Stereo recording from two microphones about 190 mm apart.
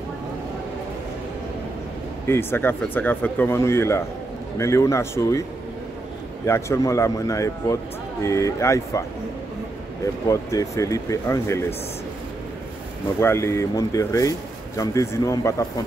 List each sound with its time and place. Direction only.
2.2 s a man's voice: 10° left (ahead or behind)
6.4 s a man's voice: 15° left (ahead or behind)
10.3 s a man's voice: 15° left (ahead or behind)
13.2 s a man's voice: 15° left (ahead or behind)